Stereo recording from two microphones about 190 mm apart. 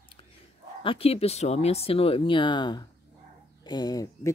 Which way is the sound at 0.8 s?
30° left (ahead or behind).